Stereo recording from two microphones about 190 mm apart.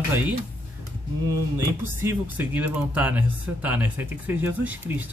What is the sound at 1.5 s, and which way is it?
Speech, 10° right (ahead or behind).